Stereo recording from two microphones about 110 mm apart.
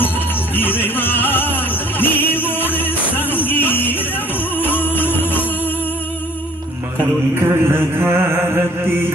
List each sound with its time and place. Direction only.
0.6 s music: 20° left (ahead or behind)
7.4 s chant: 20° right (ahead or behind)